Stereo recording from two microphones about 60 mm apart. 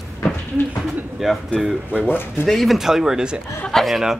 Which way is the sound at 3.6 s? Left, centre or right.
Centre.